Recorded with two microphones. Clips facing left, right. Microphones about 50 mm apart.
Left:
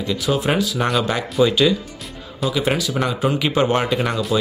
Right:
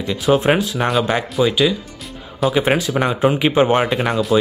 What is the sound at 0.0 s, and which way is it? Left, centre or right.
Speech, centre.